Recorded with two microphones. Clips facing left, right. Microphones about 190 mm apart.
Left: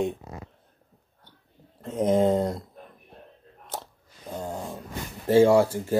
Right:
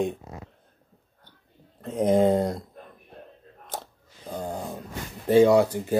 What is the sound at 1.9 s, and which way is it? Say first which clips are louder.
Speech: right 1 dB; 15° right (ahead or behind).